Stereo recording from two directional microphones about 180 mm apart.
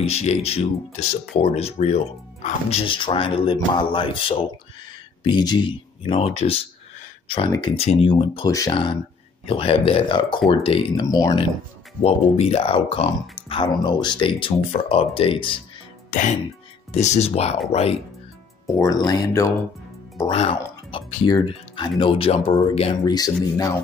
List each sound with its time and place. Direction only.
0.0 s speech: 35° left (ahead or behind)
11.1 s speech: 20° left (ahead or behind)
12.0 s speech: 35° left (ahead or behind)
16.1 s speech: 45° left (ahead or behind)
18.7 s speech: 20° left (ahead or behind)
20.2 s speech: 30° left (ahead or behind)
21.3 s speech: 25° left (ahead or behind)